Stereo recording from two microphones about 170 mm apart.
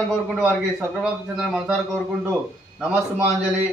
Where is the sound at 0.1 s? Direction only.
5° right (ahead or behind).